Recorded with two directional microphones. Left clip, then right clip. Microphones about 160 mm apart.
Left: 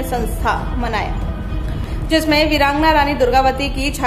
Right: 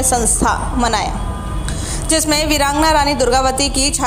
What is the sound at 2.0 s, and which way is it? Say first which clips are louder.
A woman's voice: left 1 dB; 30° right (ahead or behind).